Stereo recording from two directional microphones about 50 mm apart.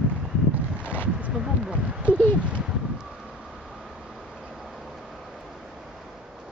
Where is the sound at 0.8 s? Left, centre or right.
Right.